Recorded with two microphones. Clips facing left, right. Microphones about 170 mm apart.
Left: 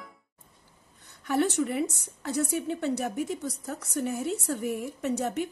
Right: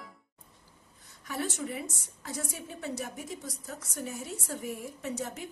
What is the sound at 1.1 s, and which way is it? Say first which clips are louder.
A woman's voice: left 9 dB; 70° left (ahead or behind).